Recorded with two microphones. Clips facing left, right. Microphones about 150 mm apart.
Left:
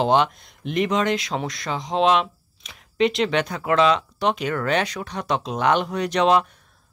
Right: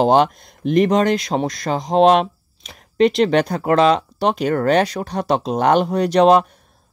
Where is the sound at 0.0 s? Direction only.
40° right (ahead or behind).